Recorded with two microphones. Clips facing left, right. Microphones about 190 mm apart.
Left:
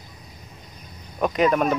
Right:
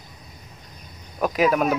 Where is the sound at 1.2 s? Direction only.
5° right (ahead or behind).